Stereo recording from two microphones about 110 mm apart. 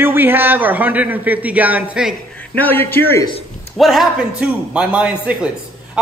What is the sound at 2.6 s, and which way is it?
Speech, 20° left (ahead or behind).